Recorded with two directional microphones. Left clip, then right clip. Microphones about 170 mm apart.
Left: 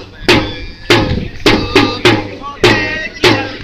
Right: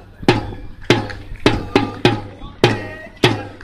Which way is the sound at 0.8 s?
55° right (ahead or behind).